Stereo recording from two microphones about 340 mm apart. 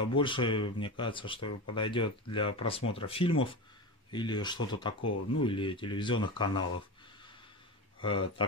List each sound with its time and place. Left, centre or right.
0.0 s speech: centre
8.0 s speech: centre